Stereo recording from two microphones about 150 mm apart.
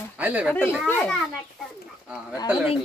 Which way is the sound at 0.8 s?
15° left (ahead or behind).